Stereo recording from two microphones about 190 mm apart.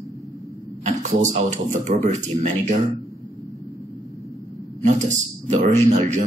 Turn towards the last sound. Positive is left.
turn(degrees=-40)  # may be behind; listen again after turning